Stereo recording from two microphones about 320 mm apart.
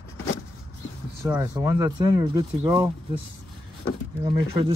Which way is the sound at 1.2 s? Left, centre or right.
Centre.